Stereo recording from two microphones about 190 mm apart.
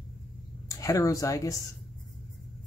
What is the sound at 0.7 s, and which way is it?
Speech, 15° left (ahead or behind).